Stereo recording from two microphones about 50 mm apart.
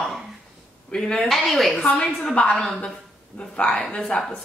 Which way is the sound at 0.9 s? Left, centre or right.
Centre.